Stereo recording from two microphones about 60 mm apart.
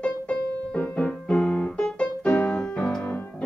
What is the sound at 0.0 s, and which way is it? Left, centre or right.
Piano, left.